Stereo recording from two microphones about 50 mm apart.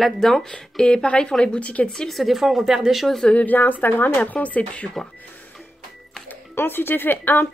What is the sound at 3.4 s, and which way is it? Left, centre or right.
Speech, left.